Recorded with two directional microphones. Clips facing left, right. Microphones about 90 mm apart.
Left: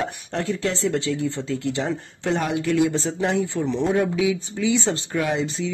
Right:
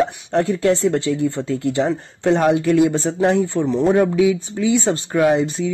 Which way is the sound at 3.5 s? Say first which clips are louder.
Right 6 dB; 40° right (ahead or behind).